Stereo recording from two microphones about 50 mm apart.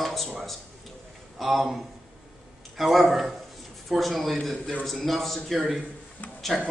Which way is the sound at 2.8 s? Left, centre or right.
Centre.